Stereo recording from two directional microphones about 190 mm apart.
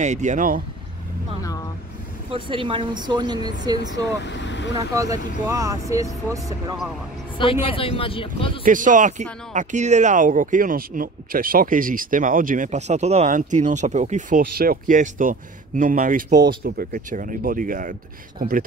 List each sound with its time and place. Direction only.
0.0 s speech: 40° right (ahead or behind)
2.3 s speech: 25° right (ahead or behind)
4.2 s speech: 70° left (ahead or behind)
4.7 s speech: 15° right (ahead or behind)
7.6 s a man's voice: 30° left (ahead or behind)
8.6 s speech: 45° right (ahead or behind)